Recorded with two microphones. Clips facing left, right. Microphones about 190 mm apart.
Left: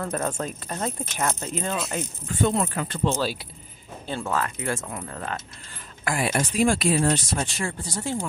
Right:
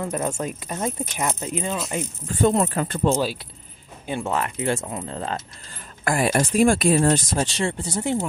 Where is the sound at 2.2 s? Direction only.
40° right (ahead or behind).